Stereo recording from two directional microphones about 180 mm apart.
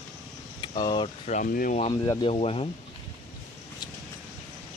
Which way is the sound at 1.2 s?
45° left (ahead or behind).